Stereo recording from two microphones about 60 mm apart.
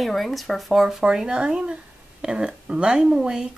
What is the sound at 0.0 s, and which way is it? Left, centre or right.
Speech, centre.